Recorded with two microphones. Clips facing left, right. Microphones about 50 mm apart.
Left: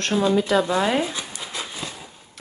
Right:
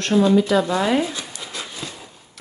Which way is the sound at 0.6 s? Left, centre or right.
Left.